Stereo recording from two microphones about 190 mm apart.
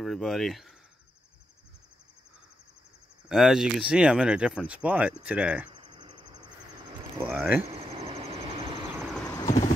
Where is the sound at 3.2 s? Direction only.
Centre (ahead or behind).